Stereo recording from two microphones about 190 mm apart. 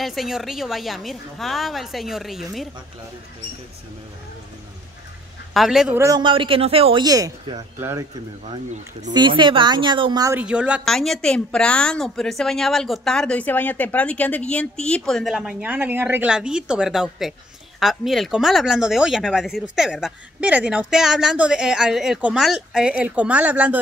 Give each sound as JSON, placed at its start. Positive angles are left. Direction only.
{"t": 0.0, "sound": "a woman's voice", "side_deg": 0}
{"t": 5.5, "sound": "a woman's voice", "side_deg": 0}
{"t": 5.9, "sound": "speech", "side_deg": -20}
{"t": 9.1, "sound": "speech", "side_deg": -25}
{"t": 10.4, "sound": "a woman's voice", "side_deg": -5}